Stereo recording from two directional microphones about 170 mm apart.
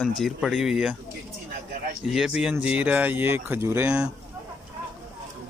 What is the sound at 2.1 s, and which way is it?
Speech, 5° right (ahead or behind).